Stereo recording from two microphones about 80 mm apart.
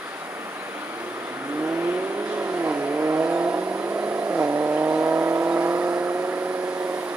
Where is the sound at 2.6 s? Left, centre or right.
Right.